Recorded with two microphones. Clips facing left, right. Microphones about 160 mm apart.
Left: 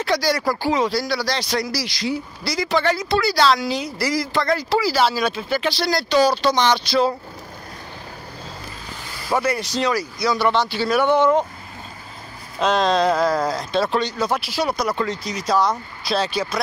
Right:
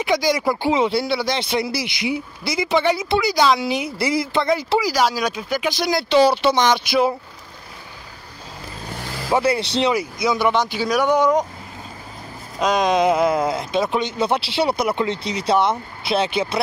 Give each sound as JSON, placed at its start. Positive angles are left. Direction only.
{"t": 0.0, "sound": "speech", "side_deg": -20}
{"t": 9.3, "sound": "speech", "side_deg": -25}
{"t": 12.5, "sound": "speech", "side_deg": -15}
{"t": 14.2, "sound": "speech", "side_deg": -25}